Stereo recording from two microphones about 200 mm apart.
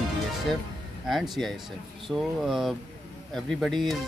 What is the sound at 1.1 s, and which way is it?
Speech, centre (ahead or behind).